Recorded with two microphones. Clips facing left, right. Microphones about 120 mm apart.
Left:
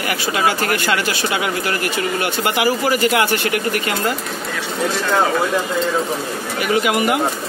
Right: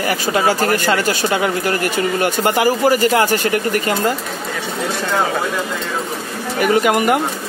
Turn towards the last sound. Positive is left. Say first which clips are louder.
# right 3 dB
turn(degrees=-45)  # may be behind; listen again after turning